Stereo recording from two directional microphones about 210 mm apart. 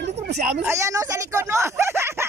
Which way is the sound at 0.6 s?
15° right (ahead or behind).